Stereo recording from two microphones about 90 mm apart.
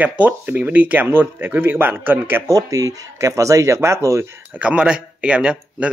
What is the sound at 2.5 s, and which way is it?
Speech, 40° right (ahead or behind).